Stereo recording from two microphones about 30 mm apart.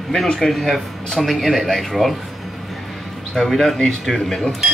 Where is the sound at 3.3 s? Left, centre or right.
Centre.